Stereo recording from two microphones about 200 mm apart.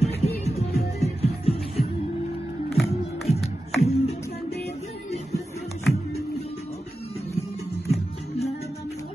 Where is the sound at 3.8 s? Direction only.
30° left (ahead or behind).